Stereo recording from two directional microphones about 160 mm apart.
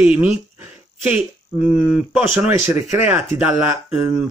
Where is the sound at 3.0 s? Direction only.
10° right (ahead or behind).